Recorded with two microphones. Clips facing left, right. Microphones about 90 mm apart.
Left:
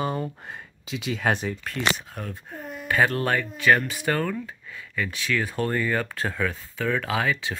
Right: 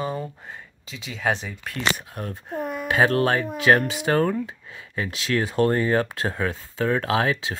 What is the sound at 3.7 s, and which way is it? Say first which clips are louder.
Speech: right 2 dB; 40° right (ahead or behind).